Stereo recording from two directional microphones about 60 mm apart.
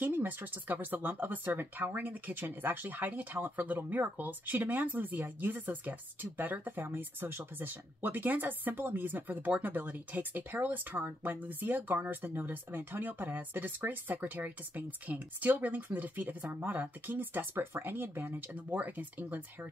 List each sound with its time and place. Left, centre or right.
0.0 s speech: right